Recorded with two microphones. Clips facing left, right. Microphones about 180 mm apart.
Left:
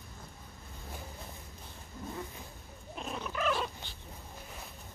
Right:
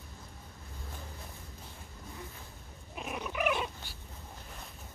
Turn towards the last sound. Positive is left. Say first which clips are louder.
# even
turn(degrees=-15)  # may be behind; listen again after turning